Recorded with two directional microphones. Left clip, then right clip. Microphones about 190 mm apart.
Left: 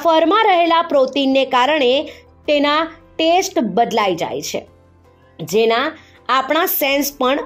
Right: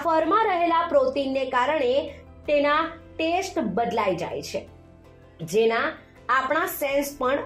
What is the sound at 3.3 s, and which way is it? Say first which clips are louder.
A woman's voice: left 9 dB; 40° left (ahead or behind).